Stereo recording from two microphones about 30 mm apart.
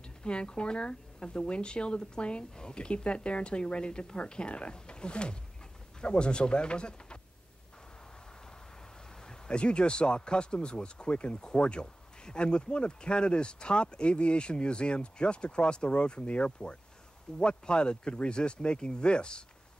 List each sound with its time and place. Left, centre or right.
0.0 s speech: left
9.1 s a sound: left
9.6 s speech: left